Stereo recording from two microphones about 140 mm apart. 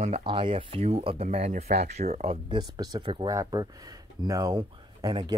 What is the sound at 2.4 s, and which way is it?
Speech, 30° right (ahead or behind).